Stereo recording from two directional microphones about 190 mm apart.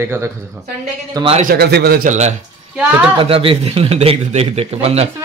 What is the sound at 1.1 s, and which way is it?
Speech, 30° right (ahead or behind).